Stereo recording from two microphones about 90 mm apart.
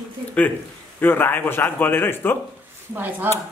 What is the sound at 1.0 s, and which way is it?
A man's voice, 20° left (ahead or behind).